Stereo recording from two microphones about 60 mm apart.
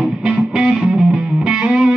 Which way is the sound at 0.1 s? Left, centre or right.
Centre.